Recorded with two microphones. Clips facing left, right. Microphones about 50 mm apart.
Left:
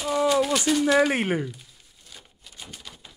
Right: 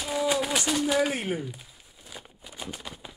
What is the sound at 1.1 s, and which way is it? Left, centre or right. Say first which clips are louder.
Speech: left 5 dB; left.